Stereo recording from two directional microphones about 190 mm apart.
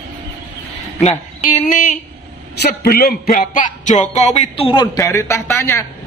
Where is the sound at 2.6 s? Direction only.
55° left (ahead or behind).